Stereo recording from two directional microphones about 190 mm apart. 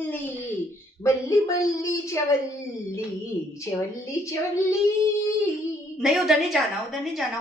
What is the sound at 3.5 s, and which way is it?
A woman's voice, 15° left (ahead or behind).